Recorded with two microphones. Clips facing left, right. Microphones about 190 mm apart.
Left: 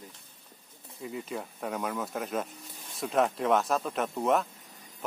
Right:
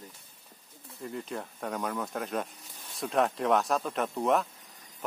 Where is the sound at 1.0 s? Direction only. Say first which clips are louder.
Even; 5° left (ahead or behind).